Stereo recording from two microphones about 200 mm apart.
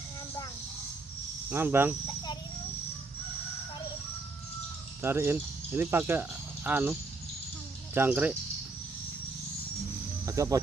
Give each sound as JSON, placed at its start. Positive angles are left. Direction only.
{"t": 1.5, "sound": "speech", "side_deg": -10}
{"t": 5.0, "sound": "speech", "side_deg": -10}
{"t": 10.2, "sound": "speech", "side_deg": -15}